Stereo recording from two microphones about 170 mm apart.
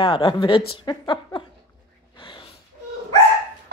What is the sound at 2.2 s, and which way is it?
Gasp, 30° left (ahead or behind).